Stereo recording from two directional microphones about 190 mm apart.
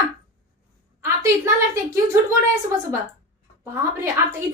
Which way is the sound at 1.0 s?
15° right (ahead or behind).